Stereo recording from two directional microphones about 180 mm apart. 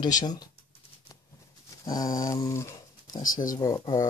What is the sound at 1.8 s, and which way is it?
Speech, 20° left (ahead or behind).